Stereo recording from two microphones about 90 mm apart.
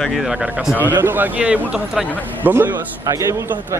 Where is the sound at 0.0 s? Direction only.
Centre (ahead or behind).